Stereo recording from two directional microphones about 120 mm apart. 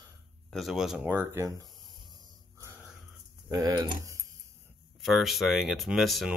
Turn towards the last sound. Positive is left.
turn(degrees=0)  # may be behind; listen again after turning